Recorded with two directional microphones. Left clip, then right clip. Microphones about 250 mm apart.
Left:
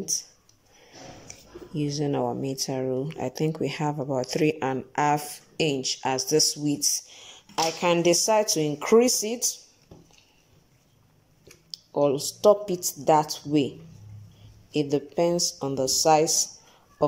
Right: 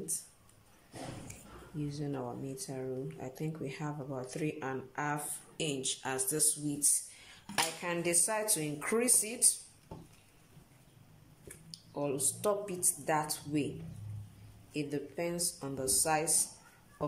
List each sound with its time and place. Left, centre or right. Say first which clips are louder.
1.8 s speech: left 13 dB; left
8.1 s speech: left 12 dB; left
11.9 s speech: left 12 dB; left
14.7 s speech: left 12 dB; left